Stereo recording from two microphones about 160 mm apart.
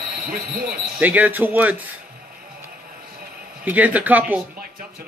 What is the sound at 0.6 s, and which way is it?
Speech, 10° right (ahead or behind).